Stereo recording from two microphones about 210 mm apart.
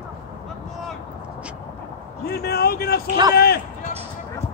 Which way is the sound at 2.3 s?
50° left (ahead or behind).